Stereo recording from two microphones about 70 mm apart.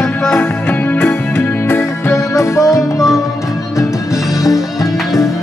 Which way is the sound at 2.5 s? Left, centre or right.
Left.